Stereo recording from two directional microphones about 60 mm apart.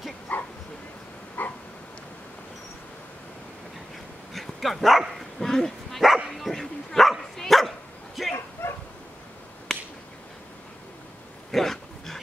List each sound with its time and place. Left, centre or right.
0.3 s bow-wow: left
1.4 s dog: left
4.3 s dog: centre
5.4 s dog: centre
8.2 s bow-wow: centre
8.6 s bow-wow: left
11.5 s dog: centre